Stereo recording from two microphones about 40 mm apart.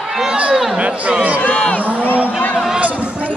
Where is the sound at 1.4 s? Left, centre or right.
Left.